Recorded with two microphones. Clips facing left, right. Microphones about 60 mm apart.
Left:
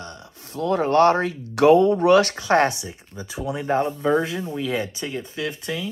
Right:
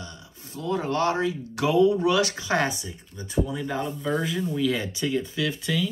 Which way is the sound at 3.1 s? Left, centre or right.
Left.